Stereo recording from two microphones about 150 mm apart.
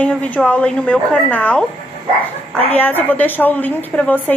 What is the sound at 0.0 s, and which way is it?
A woman's voice, 10° left (ahead or behind).